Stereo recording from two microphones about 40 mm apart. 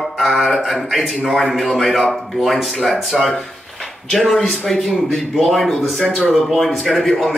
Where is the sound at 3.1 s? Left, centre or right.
Centre.